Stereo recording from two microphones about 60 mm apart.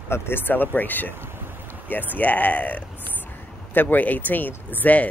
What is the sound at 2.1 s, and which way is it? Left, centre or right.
Speech, left.